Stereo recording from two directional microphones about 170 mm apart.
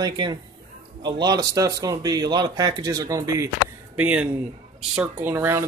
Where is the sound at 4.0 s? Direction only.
10° right (ahead or behind).